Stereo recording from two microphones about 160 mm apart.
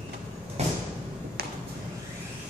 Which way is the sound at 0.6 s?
40° right (ahead or behind).